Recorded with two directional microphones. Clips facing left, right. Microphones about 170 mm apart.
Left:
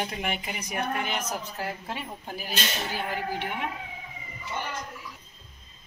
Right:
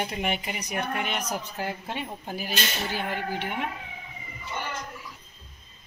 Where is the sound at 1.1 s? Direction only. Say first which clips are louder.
Right 1 dB; centre (ahead or behind).